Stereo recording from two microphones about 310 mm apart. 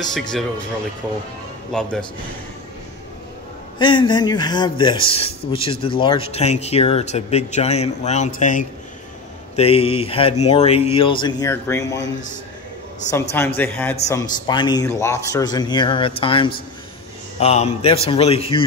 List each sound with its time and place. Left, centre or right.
0.1 s a man's voice: centre
1.7 s a man's voice: centre
3.7 s a man's voice: centre
13.6 s a man's voice: centre